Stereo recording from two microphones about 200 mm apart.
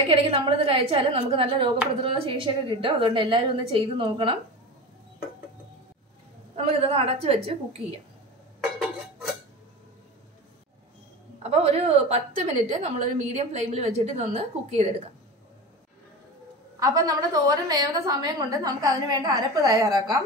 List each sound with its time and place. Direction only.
0.1 s a woman's voice: 25° right (ahead or behind)
6.5 s a woman's voice: 30° right (ahead or behind)
8.5 s dishes: centre (ahead or behind)
11.5 s a woman's voice: 30° right (ahead or behind)
16.8 s a woman's voice: 20° right (ahead or behind)